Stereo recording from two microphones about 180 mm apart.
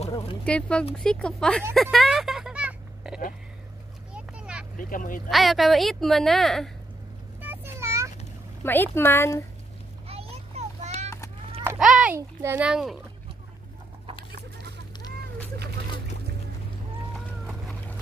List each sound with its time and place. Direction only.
0.5 s speech: 5° left (ahead or behind)
1.8 s a sound: centre (ahead or behind)
4.7 s speech: 50° left (ahead or behind)
5.3 s speech: centre (ahead or behind)
7.3 s vehicle: 10° right (ahead or behind)
8.6 s speech: 10° left (ahead or behind)
10.0 s children playing: 35° right (ahead or behind)
11.6 s a sound: 5° right (ahead or behind)
12.2 s a child's voice: 15° right (ahead or behind)